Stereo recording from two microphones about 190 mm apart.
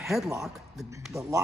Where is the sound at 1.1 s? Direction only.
15° right (ahead or behind).